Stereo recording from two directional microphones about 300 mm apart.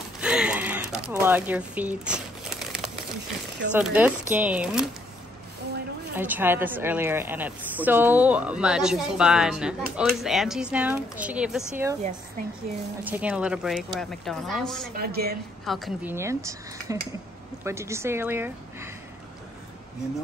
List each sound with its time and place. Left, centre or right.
0.2 s a sound: centre
3.7 s a woman's voice: centre
6.1 s a woman's voice: centre
13.0 s a woman's voice: centre
15.0 s speech: right
15.6 s speech: centre